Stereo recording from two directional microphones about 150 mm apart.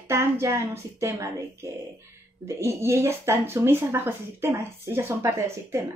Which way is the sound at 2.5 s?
20° right (ahead or behind).